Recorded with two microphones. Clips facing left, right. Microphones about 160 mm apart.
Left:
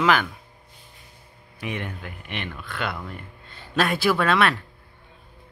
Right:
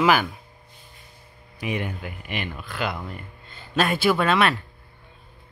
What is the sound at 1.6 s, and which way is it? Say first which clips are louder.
Speech: right 3 dB; 5° right (ahead or behind).